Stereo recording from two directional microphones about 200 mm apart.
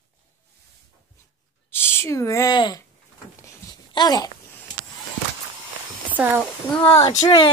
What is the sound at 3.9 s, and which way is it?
Speech, 20° left (ahead or behind).